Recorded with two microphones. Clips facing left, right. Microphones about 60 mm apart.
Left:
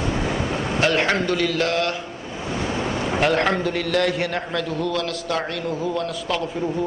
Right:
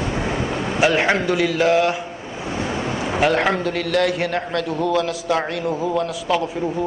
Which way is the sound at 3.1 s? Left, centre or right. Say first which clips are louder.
Right 2 dB; centre.